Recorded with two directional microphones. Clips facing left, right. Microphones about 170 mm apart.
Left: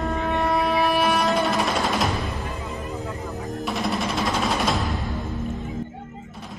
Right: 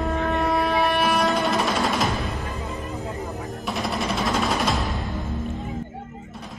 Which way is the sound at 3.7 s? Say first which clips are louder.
Even; centre (ahead or behind).